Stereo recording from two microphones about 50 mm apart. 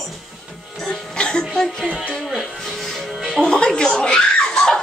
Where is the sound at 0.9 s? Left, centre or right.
Centre.